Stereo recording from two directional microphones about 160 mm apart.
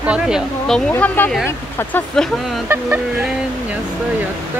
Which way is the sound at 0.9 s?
10° left (ahead or behind).